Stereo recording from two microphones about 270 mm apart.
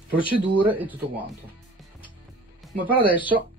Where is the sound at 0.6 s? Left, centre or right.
Centre.